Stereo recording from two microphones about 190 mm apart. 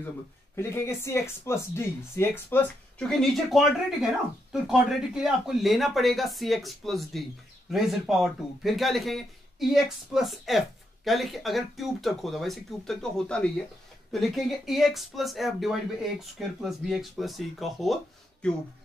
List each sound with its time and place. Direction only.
0.6 s speech: 15° left (ahead or behind)